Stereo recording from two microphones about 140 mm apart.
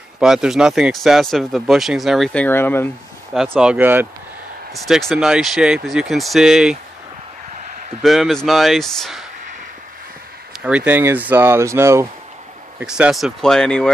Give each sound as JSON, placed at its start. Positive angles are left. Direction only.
{"t": 0.2, "sound": "speech", "side_deg": -5}
{"t": 2.4, "sound": "speech", "side_deg": 15}
{"t": 3.4, "sound": "speech", "side_deg": -10}
{"t": 4.7, "sound": "speech", "side_deg": 0}
{"t": 8.0, "sound": "speech", "side_deg": 0}
{"t": 10.6, "sound": "speech", "side_deg": -10}
{"t": 12.7, "sound": "speech", "side_deg": -5}